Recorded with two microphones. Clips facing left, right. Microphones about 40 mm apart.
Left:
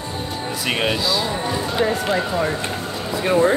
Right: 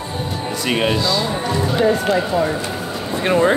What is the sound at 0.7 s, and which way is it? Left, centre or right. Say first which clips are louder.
A woman's voice: right 3 dB; centre.